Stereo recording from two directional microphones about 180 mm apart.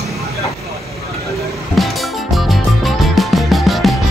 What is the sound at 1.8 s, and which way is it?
Music, centre (ahead or behind).